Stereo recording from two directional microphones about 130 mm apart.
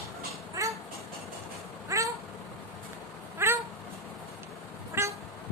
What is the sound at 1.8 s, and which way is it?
Cat, 25° right (ahead or behind).